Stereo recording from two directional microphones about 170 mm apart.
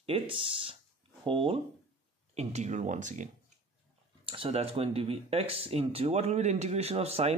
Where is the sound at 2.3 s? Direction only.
40° right (ahead or behind).